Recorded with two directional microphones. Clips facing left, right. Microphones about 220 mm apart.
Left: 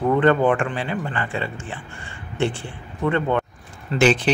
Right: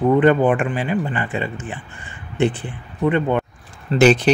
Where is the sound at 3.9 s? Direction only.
40° right (ahead or behind).